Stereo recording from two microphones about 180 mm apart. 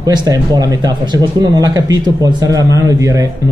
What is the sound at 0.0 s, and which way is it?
Speech, 20° right (ahead or behind).